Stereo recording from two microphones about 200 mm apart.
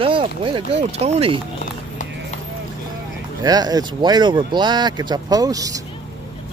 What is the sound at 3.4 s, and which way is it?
Speech, 20° right (ahead or behind).